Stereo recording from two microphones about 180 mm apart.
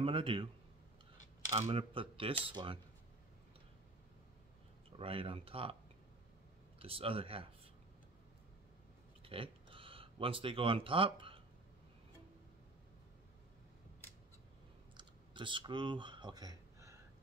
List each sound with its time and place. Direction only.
0.0 s a man's voice: 30° right (ahead or behind)
1.5 s a man's voice: 30° right (ahead or behind)
4.9 s speech: 30° right (ahead or behind)
6.8 s speech: 30° right (ahead or behind)
9.2 s a sound: 30° right (ahead or behind)
15.0 s a sound: 25° right (ahead or behind)